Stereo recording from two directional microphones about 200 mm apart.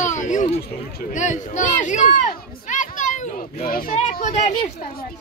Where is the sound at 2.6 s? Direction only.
40° left (ahead or behind).